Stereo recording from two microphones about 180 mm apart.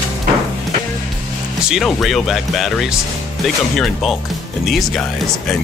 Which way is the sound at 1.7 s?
Centre (ahead or behind).